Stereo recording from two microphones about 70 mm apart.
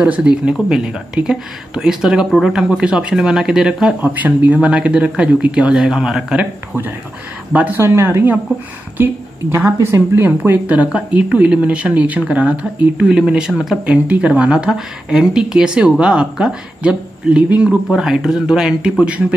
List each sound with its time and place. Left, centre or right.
0.0 s speech: centre
4.0 s speech: right; by 6.2 s centre
6.3 s a woman's voice: right
7.7 s a woman's voice: right; by 19.2 s centre